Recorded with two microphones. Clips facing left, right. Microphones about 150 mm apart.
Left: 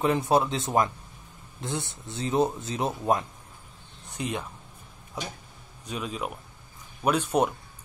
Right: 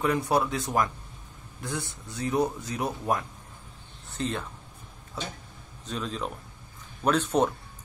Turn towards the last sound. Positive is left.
turn(degrees=10)  # may be behind; listen again after turning